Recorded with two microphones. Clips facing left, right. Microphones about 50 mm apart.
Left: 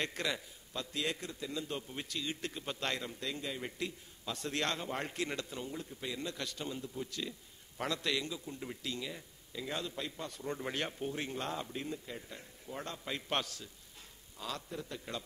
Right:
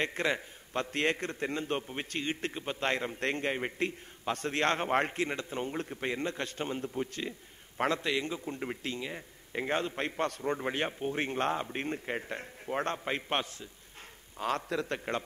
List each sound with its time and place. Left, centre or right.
0.0 s speech: right
0.7 s a man's voice: right
3.2 s a man's voice: right
4.7 s a man's voice: right
5.1 s speech: right
5.6 s a man's voice: right
8.0 s a man's voice: right
8.3 s speech: right
9.5 s a man's voice: right
10.4 s speech: right
10.7 s speech: right
11.8 s a man's voice: right
13.3 s a man's voice: right
14.7 s a man's voice: right